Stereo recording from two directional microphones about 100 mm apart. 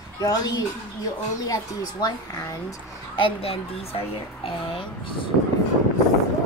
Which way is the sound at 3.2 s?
65° left (ahead or behind).